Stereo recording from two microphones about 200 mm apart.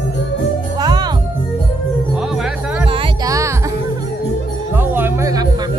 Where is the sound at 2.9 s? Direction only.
20° right (ahead or behind).